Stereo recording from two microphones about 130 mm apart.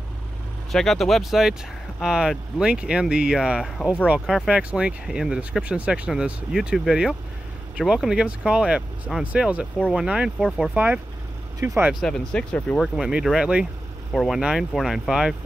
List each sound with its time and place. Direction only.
0.7 s speech: centre (ahead or behind)
11.6 s speech: 20° right (ahead or behind)
11.9 s speech: 5° left (ahead or behind)